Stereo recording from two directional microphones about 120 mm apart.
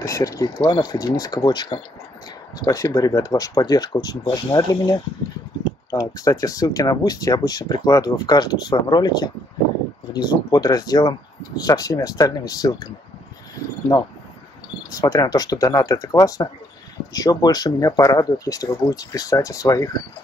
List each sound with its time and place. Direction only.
0.0 s speech: 30° left (ahead or behind)
14.9 s speech: 30° left (ahead or behind)